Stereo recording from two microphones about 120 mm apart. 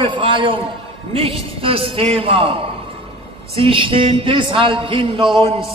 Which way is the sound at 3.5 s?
50° right (ahead or behind).